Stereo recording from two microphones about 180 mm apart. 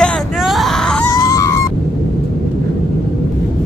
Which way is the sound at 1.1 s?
20° left (ahead or behind).